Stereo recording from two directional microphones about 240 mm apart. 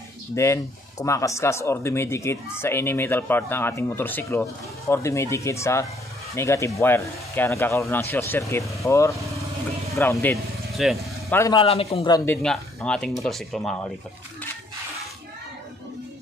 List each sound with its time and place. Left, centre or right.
0.4 s speech: centre
11.3 s speech: centre
11.6 s speech: left
12.4 s speech: centre